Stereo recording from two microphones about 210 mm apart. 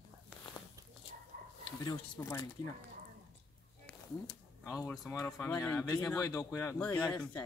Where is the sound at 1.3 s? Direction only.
45° right (ahead or behind).